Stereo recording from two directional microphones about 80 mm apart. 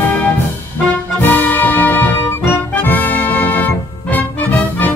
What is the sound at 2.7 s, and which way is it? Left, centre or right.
Music, left.